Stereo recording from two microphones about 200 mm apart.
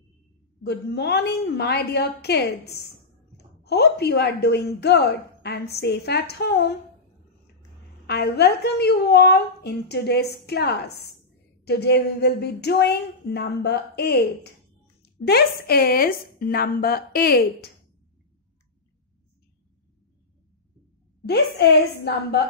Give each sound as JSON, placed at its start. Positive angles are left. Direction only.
{"t": 0.7, "sound": "a woman's voice", "side_deg": 55}
{"t": 8.1, "sound": "a woman's voice", "side_deg": 55}
{"t": 21.3, "sound": "a woman's voice", "side_deg": 55}